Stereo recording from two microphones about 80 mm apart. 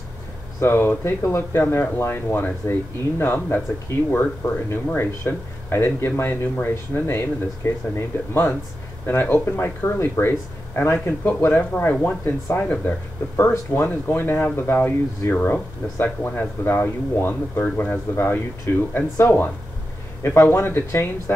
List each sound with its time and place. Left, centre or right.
0.6 s speech: left
4.6 s speech: left